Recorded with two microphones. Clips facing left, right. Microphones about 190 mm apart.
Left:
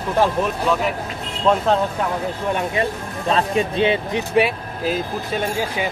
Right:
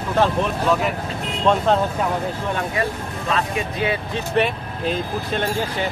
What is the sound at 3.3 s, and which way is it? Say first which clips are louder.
Speech: left 5 dB; 30° left (ahead or behind).